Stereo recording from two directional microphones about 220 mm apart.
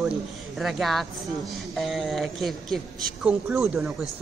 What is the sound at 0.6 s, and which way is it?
Speech, centre (ahead or behind).